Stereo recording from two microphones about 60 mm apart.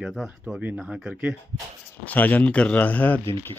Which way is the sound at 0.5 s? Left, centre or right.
Right.